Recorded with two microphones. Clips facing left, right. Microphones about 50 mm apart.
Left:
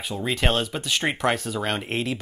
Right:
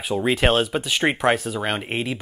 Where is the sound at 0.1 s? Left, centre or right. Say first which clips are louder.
Right 5 dB; centre.